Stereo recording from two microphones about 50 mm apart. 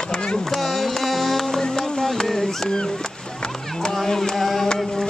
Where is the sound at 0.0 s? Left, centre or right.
Centre.